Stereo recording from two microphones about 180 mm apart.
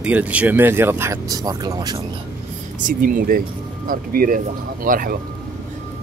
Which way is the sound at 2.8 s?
50° right (ahead or behind).